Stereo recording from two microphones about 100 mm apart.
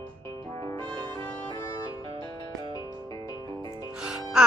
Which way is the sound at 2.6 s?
40° left (ahead or behind).